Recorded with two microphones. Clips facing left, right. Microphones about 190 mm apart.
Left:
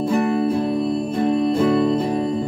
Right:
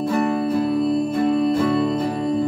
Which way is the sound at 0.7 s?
Centre (ahead or behind).